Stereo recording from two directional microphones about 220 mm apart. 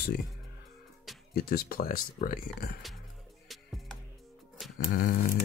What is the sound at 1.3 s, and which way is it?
Speech, 45° left (ahead or behind).